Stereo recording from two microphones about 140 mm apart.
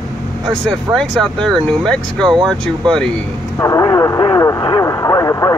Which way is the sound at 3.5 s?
20° left (ahead or behind).